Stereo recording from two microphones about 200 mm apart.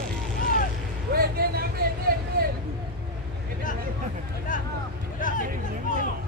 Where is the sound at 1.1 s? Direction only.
50° right (ahead or behind).